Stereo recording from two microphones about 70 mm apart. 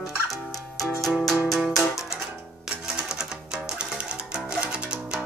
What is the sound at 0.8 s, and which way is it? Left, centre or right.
Music, centre.